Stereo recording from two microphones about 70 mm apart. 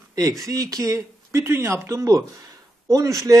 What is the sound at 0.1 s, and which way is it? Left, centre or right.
Speech, right.